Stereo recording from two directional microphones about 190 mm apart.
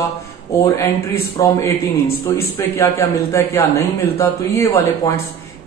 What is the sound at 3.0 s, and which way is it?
A man's voice, 15° left (ahead or behind).